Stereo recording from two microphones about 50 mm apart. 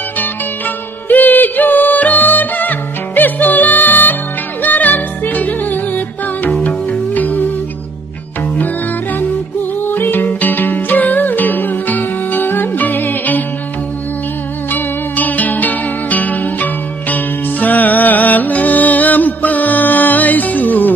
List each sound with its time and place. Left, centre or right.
1.0 s music: left
9.8 s music: left
14.7 s music: left